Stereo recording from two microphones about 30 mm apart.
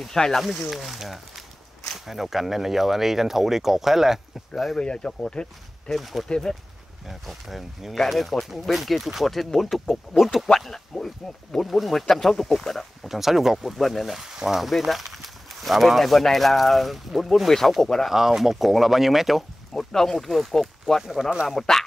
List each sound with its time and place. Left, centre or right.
0.3 s speech: centre
4.7 s speech: left
5.9 s speech: centre
6.2 s speech: left
7.1 s speech: centre
11.9 s speech: centre
13.0 s speech: centre
14.2 s speech: centre
14.9 s speech: centre
17.5 s speech: centre
18.1 s speech: centre
19.7 s speech: centre
20.2 s speech: centre